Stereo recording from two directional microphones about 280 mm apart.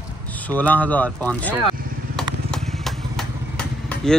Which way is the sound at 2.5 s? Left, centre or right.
Centre.